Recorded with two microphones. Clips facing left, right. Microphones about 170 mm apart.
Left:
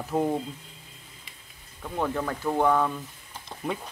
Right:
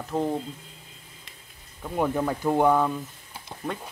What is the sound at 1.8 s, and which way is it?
Speech, 10° right (ahead or behind).